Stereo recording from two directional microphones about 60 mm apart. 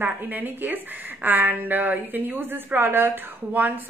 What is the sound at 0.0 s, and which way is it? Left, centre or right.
A woman's voice, right.